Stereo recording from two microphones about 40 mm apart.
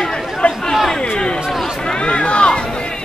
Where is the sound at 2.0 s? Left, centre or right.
Left.